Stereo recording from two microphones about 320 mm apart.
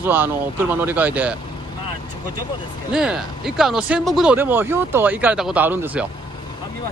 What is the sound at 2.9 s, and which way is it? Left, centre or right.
Speech, centre.